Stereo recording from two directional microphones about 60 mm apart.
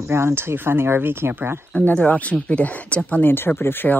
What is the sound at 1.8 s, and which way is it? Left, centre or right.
Speech, left.